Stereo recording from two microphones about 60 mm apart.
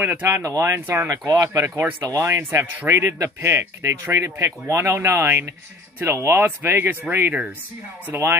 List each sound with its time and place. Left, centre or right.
0.0 s speech: right
0.4 s speech: right
0.7 s speech: right
1.0 s speech: right
8.1 s speech: right